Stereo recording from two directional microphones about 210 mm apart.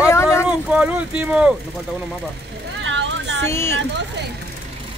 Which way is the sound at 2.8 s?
60° right (ahead or behind).